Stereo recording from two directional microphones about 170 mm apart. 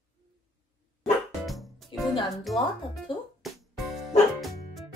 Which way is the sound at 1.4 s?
Centre (ahead or behind).